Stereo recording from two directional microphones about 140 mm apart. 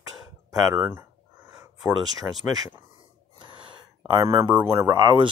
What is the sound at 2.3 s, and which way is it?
Speech, 10° right (ahead or behind).